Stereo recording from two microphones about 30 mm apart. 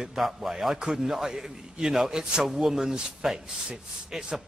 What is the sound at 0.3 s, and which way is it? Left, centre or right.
Speech, centre.